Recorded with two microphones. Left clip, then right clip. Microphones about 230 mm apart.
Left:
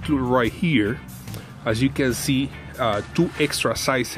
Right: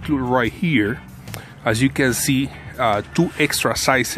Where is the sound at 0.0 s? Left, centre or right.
Centre.